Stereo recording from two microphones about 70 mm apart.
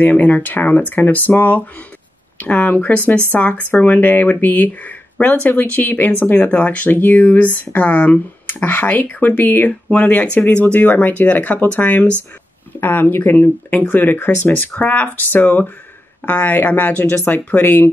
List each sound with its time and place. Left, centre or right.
0.0 s speech: left